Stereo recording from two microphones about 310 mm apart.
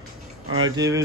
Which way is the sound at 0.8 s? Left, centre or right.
Centre.